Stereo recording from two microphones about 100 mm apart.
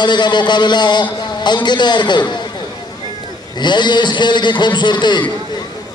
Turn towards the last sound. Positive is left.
turn(degrees=50)  # may be behind; listen again after turning